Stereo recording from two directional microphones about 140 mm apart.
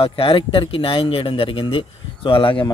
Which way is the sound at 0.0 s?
40° left (ahead or behind).